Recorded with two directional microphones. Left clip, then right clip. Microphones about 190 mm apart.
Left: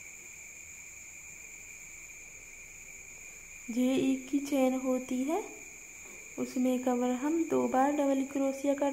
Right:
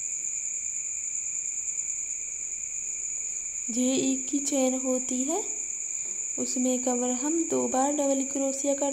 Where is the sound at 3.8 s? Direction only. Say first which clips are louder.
Right 2 dB; 10° right (ahead or behind).